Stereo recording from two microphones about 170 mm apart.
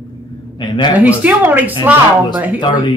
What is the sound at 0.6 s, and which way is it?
Speech, 25° left (ahead or behind).